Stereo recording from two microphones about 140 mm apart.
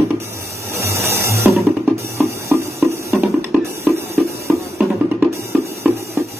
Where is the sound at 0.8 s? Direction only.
20° right (ahead or behind).